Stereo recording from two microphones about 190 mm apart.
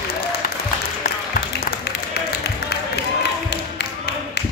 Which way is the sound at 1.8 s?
60° left (ahead or behind).